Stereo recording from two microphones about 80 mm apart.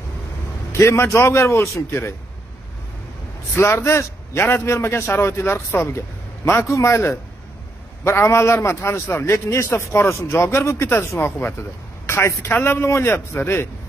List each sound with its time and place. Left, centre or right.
0.7 s a man's voice: left
3.5 s a man's voice: left